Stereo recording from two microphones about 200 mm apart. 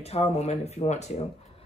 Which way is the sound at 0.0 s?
30° left (ahead or behind).